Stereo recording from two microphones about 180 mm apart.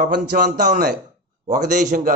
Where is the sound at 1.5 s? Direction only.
45° right (ahead or behind).